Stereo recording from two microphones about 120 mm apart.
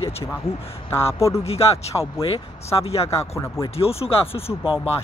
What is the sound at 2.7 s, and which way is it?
Speech, 40° left (ahead or behind).